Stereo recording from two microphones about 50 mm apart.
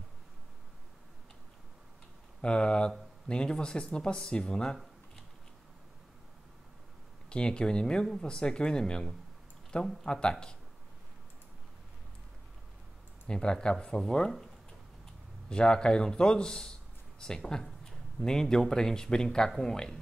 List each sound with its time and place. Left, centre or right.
2.4 s speech: centre
7.2 s speech: centre
13.3 s speech: centre
15.5 s speech: centre